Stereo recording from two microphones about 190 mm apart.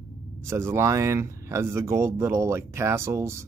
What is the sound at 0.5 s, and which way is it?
Speech, 15° right (ahead or behind).